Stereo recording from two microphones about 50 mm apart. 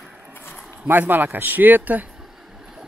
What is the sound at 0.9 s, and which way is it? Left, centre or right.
Speech, right.